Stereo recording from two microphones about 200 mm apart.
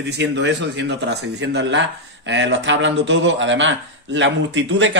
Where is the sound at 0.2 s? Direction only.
60° right (ahead or behind).